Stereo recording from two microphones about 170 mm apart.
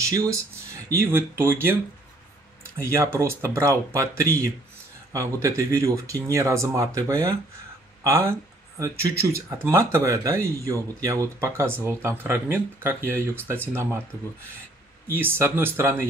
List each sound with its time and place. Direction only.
0.0 s speech: 20° right (ahead or behind)
2.8 s speech: 15° right (ahead or behind)
15.0 s speech: 15° right (ahead or behind)